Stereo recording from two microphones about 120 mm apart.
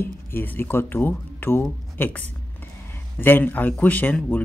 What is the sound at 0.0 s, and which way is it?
Speech, 20° left (ahead or behind).